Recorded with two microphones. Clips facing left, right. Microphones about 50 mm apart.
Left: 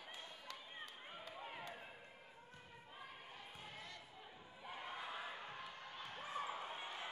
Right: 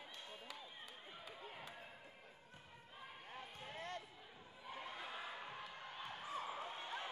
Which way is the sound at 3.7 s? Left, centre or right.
Right.